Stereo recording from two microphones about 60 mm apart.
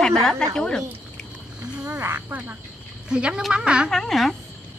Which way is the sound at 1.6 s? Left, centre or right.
Centre.